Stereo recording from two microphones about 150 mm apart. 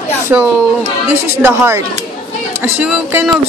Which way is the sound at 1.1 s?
15° right (ahead or behind).